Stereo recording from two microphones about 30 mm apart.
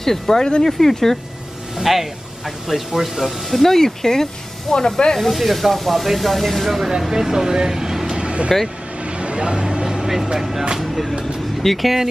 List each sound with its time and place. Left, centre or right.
0.0 s speech: centre
1.8 s speech: centre
3.7 s speech: centre
5.3 s speech: centre
7.0 s speech: centre
8.2 s vehicle: right
9.4 s speech: right
9.8 s vehicle: centre
10.8 s speech: centre